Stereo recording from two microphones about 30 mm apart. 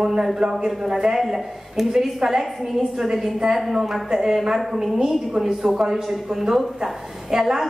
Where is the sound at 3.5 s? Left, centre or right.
Centre.